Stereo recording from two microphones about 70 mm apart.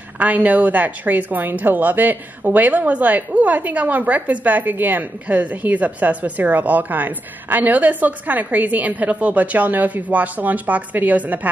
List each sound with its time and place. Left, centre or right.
0.2 s a woman's voice: right